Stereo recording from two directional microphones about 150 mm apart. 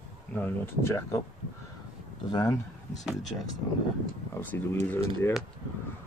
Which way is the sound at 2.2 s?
25° left (ahead or behind).